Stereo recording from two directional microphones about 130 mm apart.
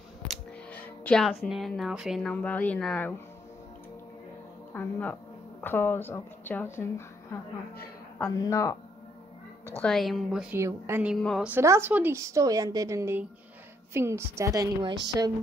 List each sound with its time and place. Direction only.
0.3 s a sound: 10° left (ahead or behind)
1.4 s speech: centre (ahead or behind)
2.3 s a woman's voice: 10° left (ahead or behind)
4.7 s a woman's voice: 15° left (ahead or behind)
8.4 s speech: 25° left (ahead or behind)
9.8 s speech: centre (ahead or behind)
10.5 s a woman's voice: 15° right (ahead or behind); by 15.3 s 35° right (ahead or behind)